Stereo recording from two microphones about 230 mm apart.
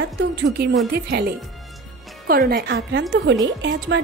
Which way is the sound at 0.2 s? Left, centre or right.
Right.